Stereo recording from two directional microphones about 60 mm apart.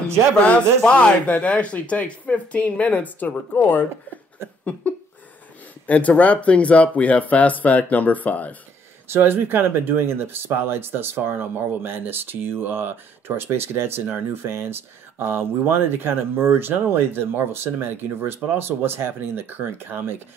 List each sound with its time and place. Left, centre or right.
0.5 s speech: left
5.9 s speech: left
9.0 s speech: right